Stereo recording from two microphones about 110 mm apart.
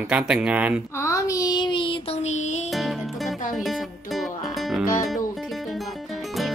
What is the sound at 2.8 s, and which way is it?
Music, centre (ahead or behind).